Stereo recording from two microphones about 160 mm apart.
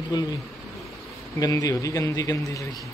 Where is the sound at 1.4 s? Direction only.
20° left (ahead or behind).